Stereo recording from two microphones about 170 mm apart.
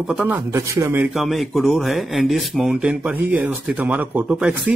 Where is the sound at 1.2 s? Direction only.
Centre (ahead or behind).